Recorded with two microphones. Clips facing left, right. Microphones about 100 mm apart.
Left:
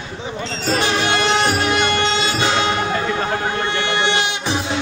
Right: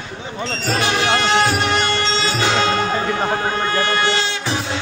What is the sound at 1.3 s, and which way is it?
Music, 15° left (ahead or behind).